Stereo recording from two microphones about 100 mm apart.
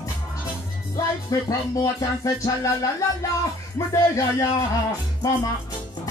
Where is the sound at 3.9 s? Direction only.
35° left (ahead or behind).